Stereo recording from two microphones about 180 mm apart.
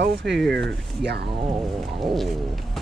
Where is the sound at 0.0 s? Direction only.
70° right (ahead or behind).